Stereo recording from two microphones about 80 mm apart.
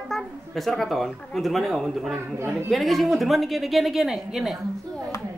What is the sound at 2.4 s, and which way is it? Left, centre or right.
Speech, right.